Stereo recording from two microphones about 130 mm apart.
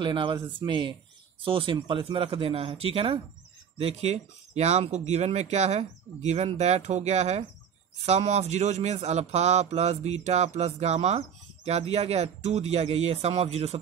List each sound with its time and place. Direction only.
0.0 s speech: 40° right (ahead or behind)